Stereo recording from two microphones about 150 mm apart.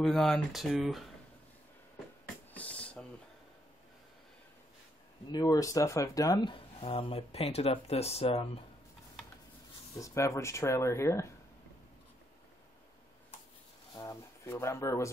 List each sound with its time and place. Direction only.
0.0 s speech: centre (ahead or behind)
2.5 s a sound: 10° left (ahead or behind)
5.3 s speech: 25° left (ahead or behind); by 8.5 s 40° left (ahead or behind)
9.9 s speech: 20° left (ahead or behind)
13.9 s speech: 20° left (ahead or behind)